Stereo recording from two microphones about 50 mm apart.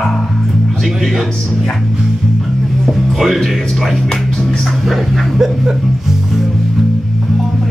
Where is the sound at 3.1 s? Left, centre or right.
Centre.